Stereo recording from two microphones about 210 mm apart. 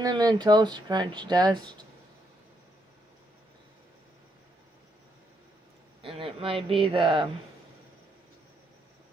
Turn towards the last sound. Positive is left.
turn(degrees=-25)  # may be behind; listen again after turning